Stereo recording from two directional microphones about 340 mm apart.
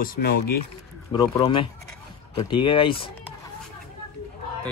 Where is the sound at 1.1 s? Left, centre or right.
Centre.